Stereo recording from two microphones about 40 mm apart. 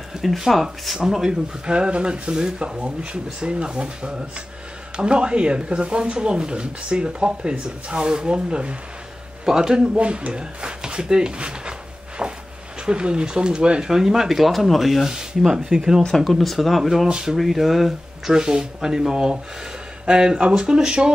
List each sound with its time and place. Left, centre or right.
0.4 s speech: centre; by 8.7 s right
9.5 s speech: centre
9.8 s speech: right
12.2 s a sound: right
12.8 s speech: right; by 15.0 s centre
15.0 s speech: centre
16.2 s speech: centre
17.1 s speech: centre
17.4 s speech: centre
18.4 s speech: centre